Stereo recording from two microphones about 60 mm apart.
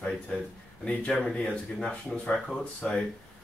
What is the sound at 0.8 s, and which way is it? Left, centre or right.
Speech, left.